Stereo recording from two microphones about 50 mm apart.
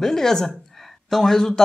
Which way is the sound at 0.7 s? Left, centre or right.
Centre.